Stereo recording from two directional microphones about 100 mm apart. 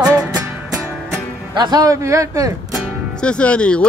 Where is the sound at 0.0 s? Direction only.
35° right (ahead or behind).